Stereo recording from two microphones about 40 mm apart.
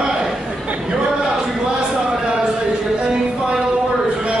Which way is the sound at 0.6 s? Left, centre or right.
Right.